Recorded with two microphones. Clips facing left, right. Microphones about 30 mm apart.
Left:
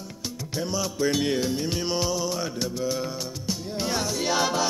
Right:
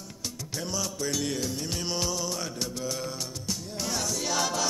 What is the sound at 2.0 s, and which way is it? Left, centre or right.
Music, centre.